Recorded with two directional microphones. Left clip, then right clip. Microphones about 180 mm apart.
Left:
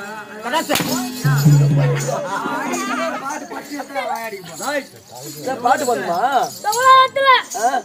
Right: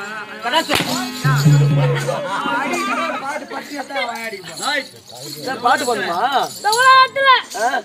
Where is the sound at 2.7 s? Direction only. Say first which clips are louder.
Right 2 dB; 65° right (ahead or behind).